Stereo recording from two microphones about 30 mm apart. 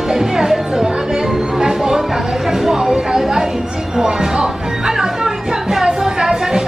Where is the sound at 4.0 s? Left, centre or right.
Right.